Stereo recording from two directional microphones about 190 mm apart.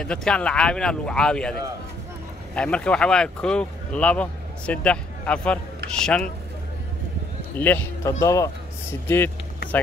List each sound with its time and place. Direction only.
0.0 s speech: 5° left (ahead or behind)
7.5 s a man's voice: 10° left (ahead or behind)